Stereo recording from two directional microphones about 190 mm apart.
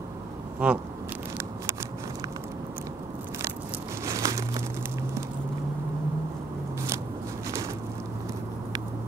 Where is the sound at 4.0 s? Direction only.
15° right (ahead or behind).